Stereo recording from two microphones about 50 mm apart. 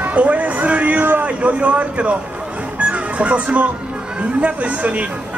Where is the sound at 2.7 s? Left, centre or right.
Right.